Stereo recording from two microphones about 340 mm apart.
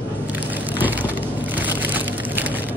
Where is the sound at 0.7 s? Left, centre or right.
Centre.